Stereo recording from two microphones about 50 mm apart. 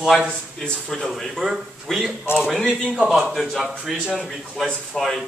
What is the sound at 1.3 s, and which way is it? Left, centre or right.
Speech, centre.